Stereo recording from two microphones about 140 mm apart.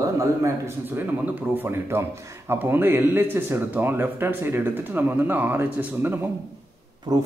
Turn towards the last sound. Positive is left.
turn(degrees=-25)  # may be behind; listen again after turning